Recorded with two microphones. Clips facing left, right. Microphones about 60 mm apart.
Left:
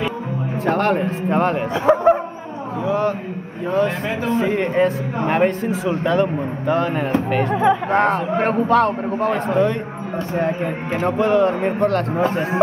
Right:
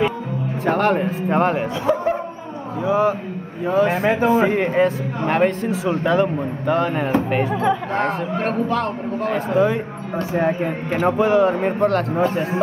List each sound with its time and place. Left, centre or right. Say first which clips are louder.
0.7 s speech: even; centre
1.9 s music: left 5 dB; left
2.8 s a man's voice: right 2 dB; centre
7.5 s a man's voice: left 4 dB; centre
8.6 s a man's voice: left 6 dB; left
9.6 s speech: even; centre